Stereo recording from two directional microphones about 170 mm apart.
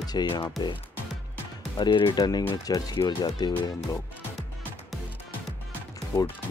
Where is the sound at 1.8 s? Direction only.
25° left (ahead or behind).